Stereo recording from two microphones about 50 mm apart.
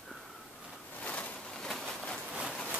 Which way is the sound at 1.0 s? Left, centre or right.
Left.